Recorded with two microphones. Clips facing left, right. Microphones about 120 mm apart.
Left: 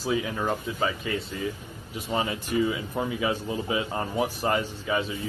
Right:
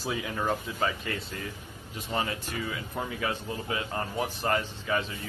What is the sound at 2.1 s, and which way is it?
Speech, 15° left (ahead or behind).